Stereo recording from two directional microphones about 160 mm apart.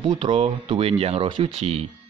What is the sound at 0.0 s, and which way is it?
A man's voice, 30° right (ahead or behind).